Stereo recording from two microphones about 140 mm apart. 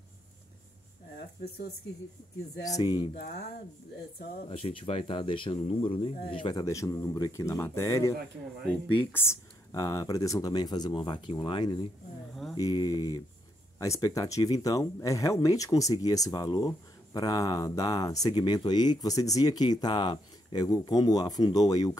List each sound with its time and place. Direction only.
2.8 s speech: 30° left (ahead or behind)
4.5 s speech: 40° left (ahead or behind)
6.6 s speech: 20° left (ahead or behind)